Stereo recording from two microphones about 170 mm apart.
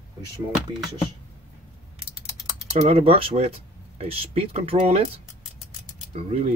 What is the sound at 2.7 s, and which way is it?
Speech, 35° right (ahead or behind).